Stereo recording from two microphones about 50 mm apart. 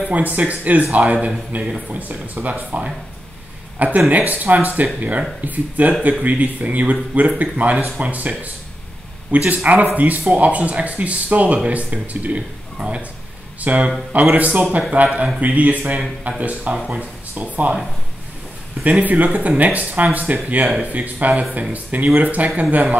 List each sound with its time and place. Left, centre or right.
0.1 s speech: right
18.9 s speech: right